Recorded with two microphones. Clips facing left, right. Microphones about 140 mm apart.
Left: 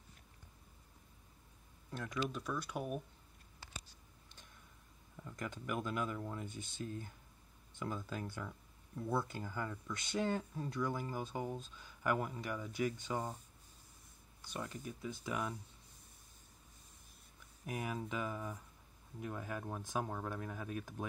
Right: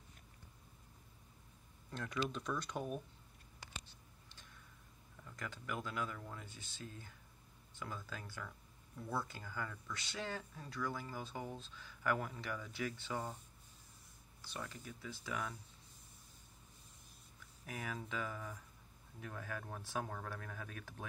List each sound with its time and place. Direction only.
1.9 s speech: 10° left (ahead or behind)
5.1 s speech: 20° left (ahead or behind)
14.4 s speech: 15° left (ahead or behind)
17.6 s speech: 20° left (ahead or behind)